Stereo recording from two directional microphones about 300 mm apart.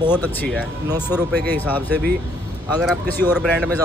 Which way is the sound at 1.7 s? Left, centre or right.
Centre.